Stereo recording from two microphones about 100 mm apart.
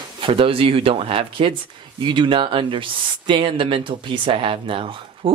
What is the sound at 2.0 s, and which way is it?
Speech, 50° right (ahead or behind).